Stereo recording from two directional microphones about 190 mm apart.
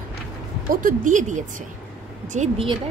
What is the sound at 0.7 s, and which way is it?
A woman's voice, 45° right (ahead or behind).